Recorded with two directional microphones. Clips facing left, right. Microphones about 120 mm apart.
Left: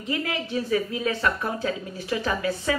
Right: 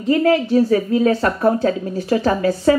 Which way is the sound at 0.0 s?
40° right (ahead or behind).